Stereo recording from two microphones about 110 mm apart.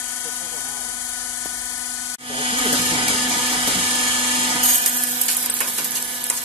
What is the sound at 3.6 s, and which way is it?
Dental drill, 60° right (ahead or behind).